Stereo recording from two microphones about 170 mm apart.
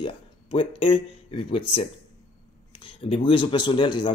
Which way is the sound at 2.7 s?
30° left (ahead or behind).